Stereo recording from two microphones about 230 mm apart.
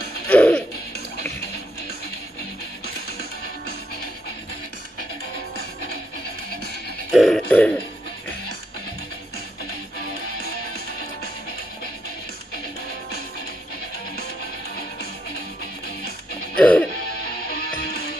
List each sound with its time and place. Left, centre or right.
0.3 s music: centre
7.1 s music: centre
16.5 s music: centre
17.6 s music: left